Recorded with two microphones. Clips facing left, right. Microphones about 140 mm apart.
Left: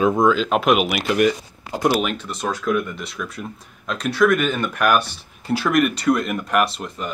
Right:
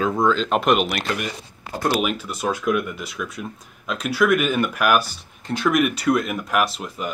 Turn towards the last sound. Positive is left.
turn(degrees=0)  # may be behind; listen again after turning